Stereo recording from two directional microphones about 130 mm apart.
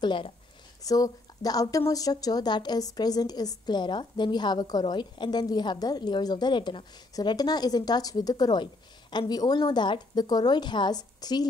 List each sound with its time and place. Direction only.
0.0 s a woman's voice: 40° left (ahead or behind)
0.8 s a woman's voice: 30° left (ahead or behind)